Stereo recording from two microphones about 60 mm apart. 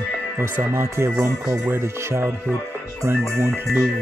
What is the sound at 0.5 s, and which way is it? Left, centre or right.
Speech, right.